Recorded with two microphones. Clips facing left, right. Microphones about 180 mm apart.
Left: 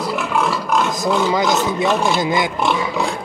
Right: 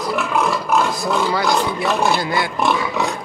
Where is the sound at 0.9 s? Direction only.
20° left (ahead or behind).